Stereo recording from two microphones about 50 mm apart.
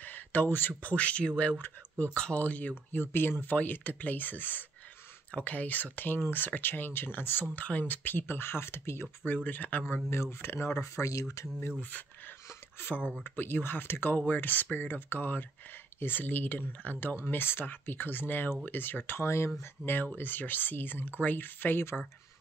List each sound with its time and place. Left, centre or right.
0.0 s speech: left
1.6 s speech: left
2.9 s speech: left
7.5 s speech: left
9.2 s speech: left
10.0 s speech: left
10.7 s speech: left
12.7 s speech: left
14.1 s speech: left
19.2 s speech: left
19.6 s speech: left